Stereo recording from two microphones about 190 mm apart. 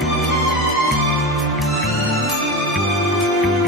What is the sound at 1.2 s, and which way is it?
Music, centre (ahead or behind).